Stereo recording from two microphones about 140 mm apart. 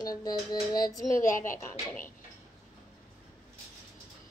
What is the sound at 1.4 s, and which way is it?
Speech, 15° left (ahead or behind).